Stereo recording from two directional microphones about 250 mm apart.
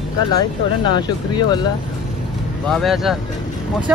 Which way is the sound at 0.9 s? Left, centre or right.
Centre.